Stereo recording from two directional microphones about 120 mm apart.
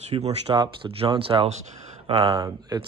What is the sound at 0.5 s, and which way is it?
Speech, 45° right (ahead or behind).